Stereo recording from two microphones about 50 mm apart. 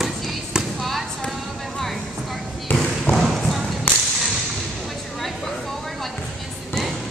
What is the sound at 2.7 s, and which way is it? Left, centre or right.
Basketball bounce, centre.